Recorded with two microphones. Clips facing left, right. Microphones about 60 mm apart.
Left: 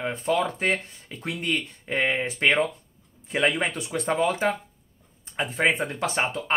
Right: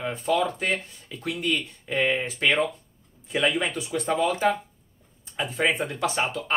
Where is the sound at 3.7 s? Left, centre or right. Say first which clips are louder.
Even; left.